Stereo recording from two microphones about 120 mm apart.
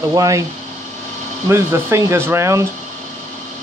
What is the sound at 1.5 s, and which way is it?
Speech, 20° right (ahead or behind).